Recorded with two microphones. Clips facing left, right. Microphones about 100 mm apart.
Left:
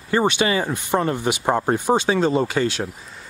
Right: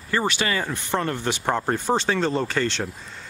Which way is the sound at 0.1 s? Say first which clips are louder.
Left 5 dB; 20° left (ahead or behind).